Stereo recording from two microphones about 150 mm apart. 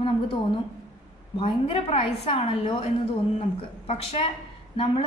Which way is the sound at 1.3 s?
35° left (ahead or behind).